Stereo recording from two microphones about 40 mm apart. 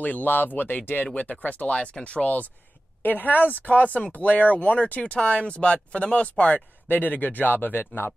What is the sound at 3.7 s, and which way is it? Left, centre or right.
Speech, left.